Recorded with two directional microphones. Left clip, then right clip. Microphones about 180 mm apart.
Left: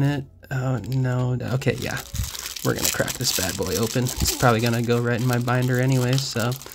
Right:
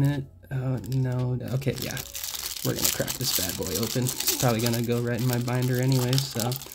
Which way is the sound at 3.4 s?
25° left (ahead or behind).